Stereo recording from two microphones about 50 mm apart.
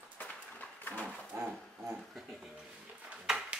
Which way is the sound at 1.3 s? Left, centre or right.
Right.